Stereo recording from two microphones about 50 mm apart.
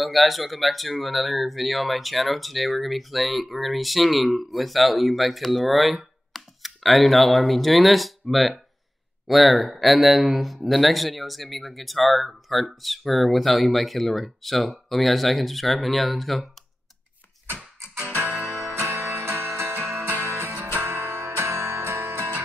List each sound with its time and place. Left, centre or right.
0.0 s speech: centre
17.6 s music: centre
18.2 s music: right
18.8 s music: right